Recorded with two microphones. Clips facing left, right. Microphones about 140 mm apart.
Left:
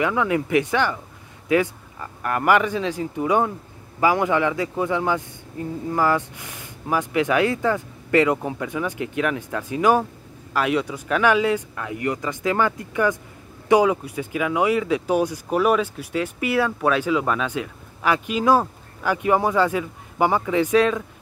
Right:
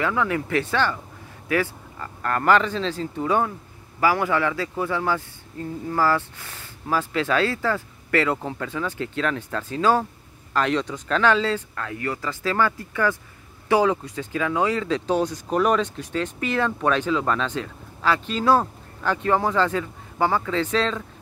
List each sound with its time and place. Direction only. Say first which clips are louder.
0.0 s speech: left 2 dB; 15° left (ahead or behind)